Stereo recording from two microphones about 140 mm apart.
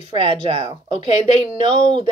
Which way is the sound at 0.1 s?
40° right (ahead or behind).